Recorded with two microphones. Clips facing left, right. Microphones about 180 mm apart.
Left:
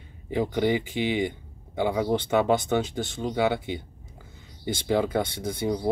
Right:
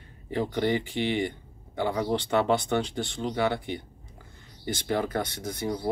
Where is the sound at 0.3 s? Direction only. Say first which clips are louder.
Left 2 dB; 10° left (ahead or behind).